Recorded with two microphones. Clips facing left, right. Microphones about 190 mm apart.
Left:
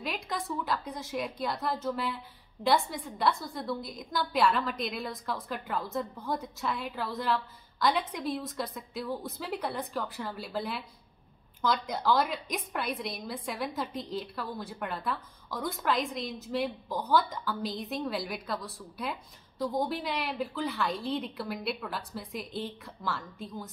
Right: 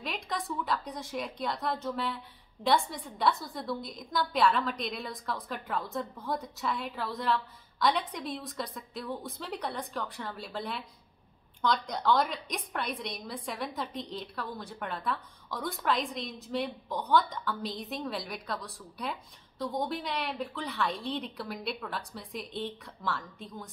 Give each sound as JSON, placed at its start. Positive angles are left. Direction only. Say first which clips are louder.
{"t": 0.0, "sound": "a woman's voice", "louder": "left 1 dB", "side_deg": 0}